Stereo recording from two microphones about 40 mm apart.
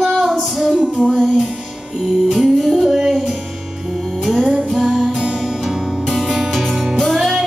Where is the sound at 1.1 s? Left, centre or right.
Centre.